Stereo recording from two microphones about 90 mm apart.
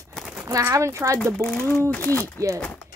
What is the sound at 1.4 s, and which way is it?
Speech, 15° left (ahead or behind).